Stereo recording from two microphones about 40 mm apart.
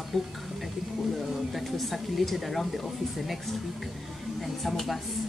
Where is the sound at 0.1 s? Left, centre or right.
Centre.